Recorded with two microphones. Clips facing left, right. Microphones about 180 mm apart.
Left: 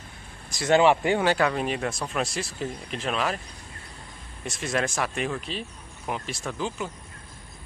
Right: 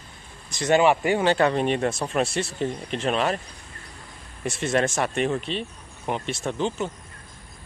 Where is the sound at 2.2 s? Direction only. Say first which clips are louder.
Right 5 dB; 30° right (ahead or behind).